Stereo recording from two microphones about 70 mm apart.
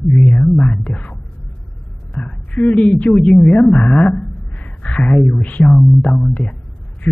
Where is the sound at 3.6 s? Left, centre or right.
Centre.